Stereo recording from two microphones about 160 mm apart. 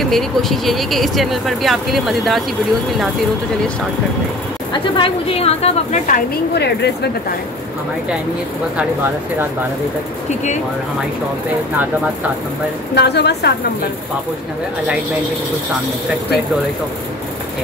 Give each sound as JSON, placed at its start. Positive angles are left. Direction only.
{"t": 0.0, "sound": "speech", "side_deg": 0}
{"t": 4.9, "sound": "a woman's voice", "side_deg": 35}
{"t": 6.0, "sound": "a woman's voice", "side_deg": 75}
{"t": 12.9, "sound": "a woman's voice", "side_deg": 90}